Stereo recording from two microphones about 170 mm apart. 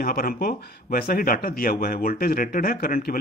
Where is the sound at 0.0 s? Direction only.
60° left (ahead or behind).